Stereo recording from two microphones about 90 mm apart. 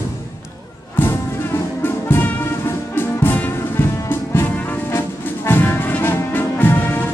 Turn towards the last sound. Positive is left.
turn(degrees=25)  # may be behind; listen again after turning